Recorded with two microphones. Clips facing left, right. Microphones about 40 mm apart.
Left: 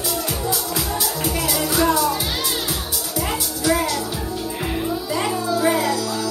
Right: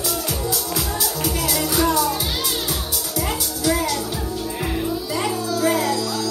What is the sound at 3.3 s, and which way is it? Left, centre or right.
Music, left.